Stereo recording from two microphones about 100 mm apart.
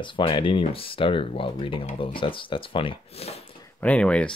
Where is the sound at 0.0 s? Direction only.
60° left (ahead or behind); by 3.4 s 90° left.